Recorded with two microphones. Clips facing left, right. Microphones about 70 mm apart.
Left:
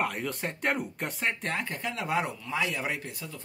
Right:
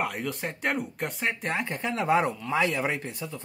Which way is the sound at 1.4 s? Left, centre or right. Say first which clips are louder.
Right 3 dB; right.